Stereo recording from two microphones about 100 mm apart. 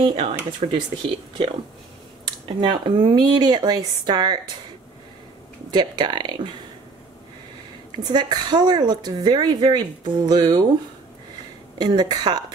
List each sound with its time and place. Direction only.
0.1 s speech: 70° right (ahead or behind)
0.6 s speech: 90° right
2.4 s speech: 55° right (ahead or behind)
5.7 s speech: 45° right (ahead or behind)
8.0 s speech: 45° right (ahead or behind)
11.8 s speech: 45° right (ahead or behind)